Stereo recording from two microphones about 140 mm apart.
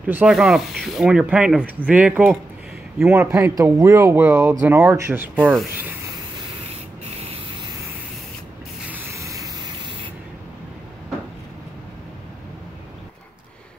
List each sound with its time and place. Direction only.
0.0 s speech: 10° right (ahead or behind)
5.4 s speech: 5° left (ahead or behind)
7.5 s vehicle: 30° right (ahead or behind)
8.8 s vehicle: 15° right (ahead or behind); by 9.9 s 30° right (ahead or behind)